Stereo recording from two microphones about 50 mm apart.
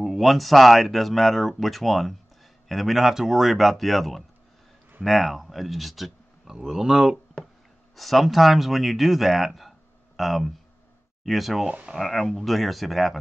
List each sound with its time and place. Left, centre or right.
0.0 s speech: centre
7.4 s a sound: centre
7.9 s speech: centre